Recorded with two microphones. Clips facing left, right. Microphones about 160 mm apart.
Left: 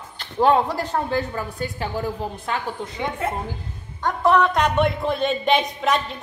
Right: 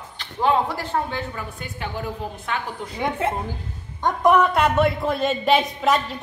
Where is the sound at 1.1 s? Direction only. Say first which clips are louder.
Left 5 dB; 35° left (ahead or behind).